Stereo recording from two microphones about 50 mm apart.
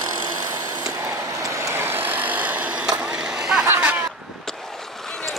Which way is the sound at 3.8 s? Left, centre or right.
Right.